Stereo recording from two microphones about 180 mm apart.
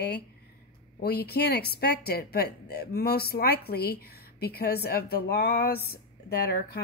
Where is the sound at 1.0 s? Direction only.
60° left (ahead or behind).